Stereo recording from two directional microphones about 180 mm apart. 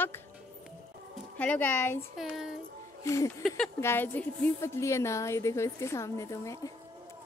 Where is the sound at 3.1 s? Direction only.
15° left (ahead or behind).